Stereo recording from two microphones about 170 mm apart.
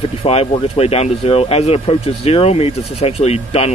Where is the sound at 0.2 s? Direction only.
35° left (ahead or behind).